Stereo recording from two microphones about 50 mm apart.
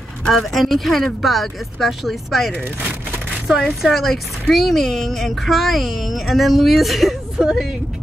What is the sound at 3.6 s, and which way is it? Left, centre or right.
Speech, centre.